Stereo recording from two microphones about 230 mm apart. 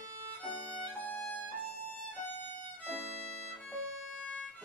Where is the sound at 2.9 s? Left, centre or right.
Right.